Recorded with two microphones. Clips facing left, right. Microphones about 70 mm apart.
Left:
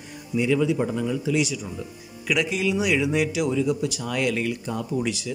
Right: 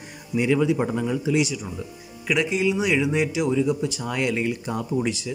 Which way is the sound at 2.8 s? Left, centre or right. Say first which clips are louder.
Even; centre.